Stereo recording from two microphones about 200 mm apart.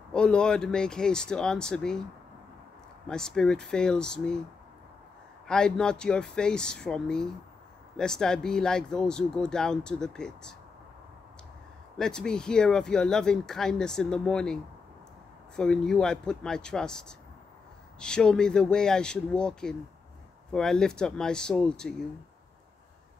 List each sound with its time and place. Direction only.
0.1 s speech: 5° left (ahead or behind)
3.1 s speech: 5° left (ahead or behind)
5.5 s speech: 5° left (ahead or behind)
12.0 s speech: 5° left (ahead or behind)